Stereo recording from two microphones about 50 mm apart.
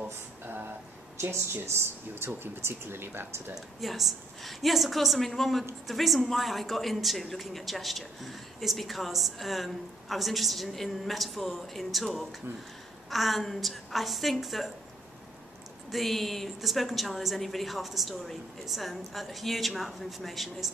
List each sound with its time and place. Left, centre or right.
1.5 s speech: right
3.5 s a woman's voice: centre
15.9 s a woman's voice: centre